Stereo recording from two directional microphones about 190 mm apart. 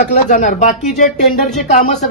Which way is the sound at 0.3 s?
45° left (ahead or behind).